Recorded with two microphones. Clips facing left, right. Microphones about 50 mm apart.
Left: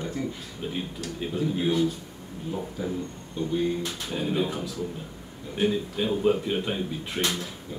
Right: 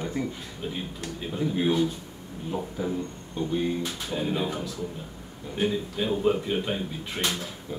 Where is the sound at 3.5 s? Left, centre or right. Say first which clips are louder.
Left 1 dB; centre.